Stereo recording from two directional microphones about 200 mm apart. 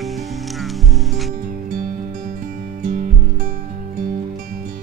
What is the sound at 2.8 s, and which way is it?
Music, 40° right (ahead or behind).